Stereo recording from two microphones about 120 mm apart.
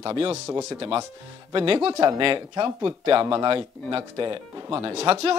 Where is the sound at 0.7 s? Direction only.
50° right (ahead or behind).